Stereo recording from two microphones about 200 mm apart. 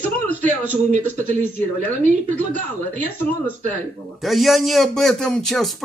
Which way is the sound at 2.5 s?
90° right.